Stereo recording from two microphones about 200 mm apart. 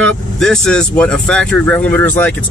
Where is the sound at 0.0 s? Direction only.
5° left (ahead or behind).